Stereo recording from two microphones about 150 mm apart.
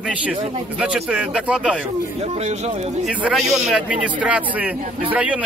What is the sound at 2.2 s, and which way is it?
Speech, 45° right (ahead or behind).